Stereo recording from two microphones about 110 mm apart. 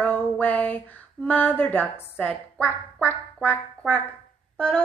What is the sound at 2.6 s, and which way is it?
Quack, 20° left (ahead or behind).